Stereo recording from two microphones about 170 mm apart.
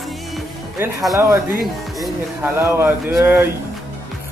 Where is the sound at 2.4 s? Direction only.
15° right (ahead or behind).